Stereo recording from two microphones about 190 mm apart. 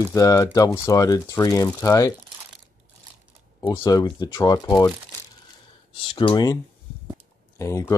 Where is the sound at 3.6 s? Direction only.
20° left (ahead or behind).